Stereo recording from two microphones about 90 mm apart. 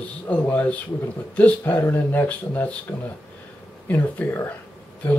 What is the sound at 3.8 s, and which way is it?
Speech, 20° left (ahead or behind).